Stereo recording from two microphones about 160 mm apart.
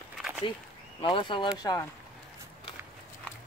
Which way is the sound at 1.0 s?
30° left (ahead or behind).